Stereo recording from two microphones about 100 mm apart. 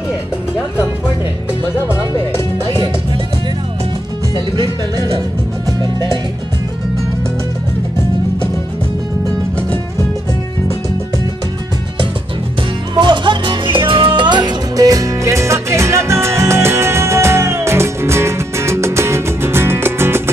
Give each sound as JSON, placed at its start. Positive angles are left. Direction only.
{"t": 5.7, "sound": "speech", "side_deg": -45}
{"t": 12.9, "sound": "music", "side_deg": -50}